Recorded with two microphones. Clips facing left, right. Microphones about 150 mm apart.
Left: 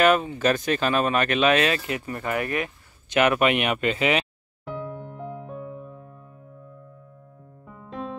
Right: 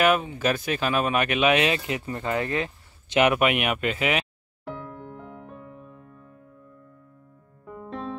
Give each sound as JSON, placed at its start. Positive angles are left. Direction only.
{"t": 0.0, "sound": "speech", "side_deg": -5}
{"t": 3.3, "sound": "speech", "side_deg": -5}
{"t": 7.6, "sound": "music", "side_deg": 0}